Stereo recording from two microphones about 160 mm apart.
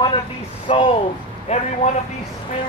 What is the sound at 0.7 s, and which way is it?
Speech, 40° left (ahead or behind).